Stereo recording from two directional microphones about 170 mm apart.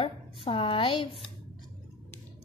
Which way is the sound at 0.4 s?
30° left (ahead or behind).